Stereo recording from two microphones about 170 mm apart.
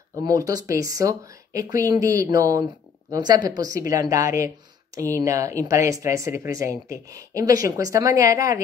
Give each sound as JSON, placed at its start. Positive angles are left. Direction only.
{"t": 0.1, "sound": "speech", "side_deg": -20}